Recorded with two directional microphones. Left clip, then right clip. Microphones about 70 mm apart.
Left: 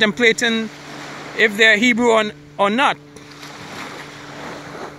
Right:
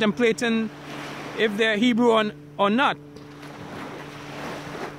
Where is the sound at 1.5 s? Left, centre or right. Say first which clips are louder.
Left 12 dB; centre.